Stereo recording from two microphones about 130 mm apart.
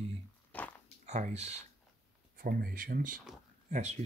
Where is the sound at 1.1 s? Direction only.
60° right (ahead or behind).